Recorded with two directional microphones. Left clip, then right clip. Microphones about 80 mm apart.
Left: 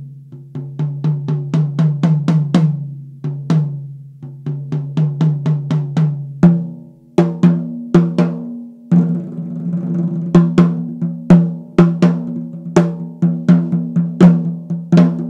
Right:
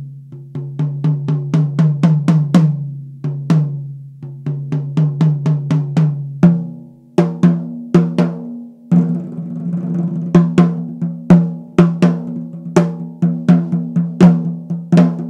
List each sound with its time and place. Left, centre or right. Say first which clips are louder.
0.6 s drum: right 2 dB; centre
4.5 s music: right 1 dB; centre
6.4 s drum: even; centre
8.8 s music: even; centre